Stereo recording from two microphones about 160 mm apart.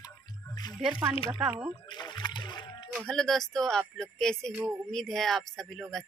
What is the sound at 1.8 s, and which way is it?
Splash, 30° left (ahead or behind).